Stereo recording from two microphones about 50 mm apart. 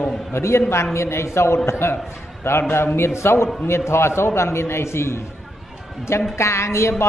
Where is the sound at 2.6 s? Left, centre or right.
Left.